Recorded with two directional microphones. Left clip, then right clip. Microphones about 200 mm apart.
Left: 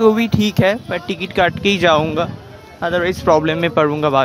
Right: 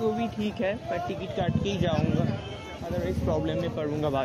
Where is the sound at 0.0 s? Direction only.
35° left (ahead or behind).